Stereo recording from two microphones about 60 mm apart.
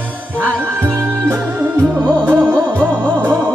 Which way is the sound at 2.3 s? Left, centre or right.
Right.